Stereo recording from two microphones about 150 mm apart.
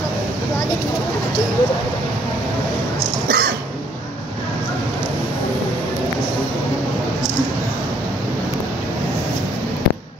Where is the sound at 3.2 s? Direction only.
90° right.